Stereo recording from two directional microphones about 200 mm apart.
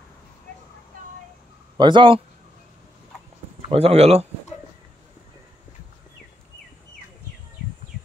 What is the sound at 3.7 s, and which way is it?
Speech, 30° right (ahead or behind).